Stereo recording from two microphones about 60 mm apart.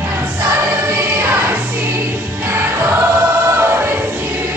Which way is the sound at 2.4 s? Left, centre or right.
Right.